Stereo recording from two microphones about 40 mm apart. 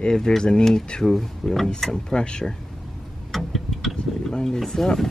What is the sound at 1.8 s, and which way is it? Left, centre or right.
Speech, centre.